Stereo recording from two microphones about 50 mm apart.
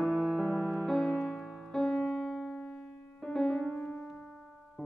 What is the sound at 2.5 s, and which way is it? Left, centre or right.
Music, left.